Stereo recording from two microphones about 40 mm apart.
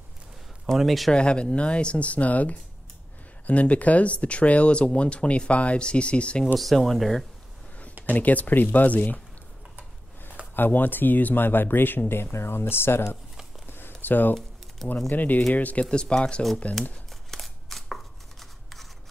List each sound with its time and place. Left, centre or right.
0.7 s speech: centre
1.1 s speech: left
6.5 s speech: centre
8.1 s speech: left
10.5 s speech: left
12.1 s speech: left
13.7 s a sound: left
14.0 s speech: left
14.8 s speech: centre
15.1 s speech: left
15.8 s speech: left
17.3 s a sound: centre